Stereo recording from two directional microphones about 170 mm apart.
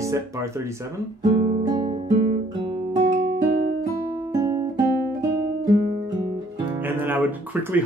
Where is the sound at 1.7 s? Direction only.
25° right (ahead or behind).